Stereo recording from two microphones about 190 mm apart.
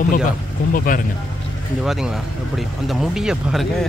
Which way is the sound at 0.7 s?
45° left (ahead or behind).